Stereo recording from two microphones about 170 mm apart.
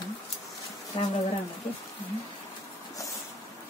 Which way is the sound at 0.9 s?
30° left (ahead or behind).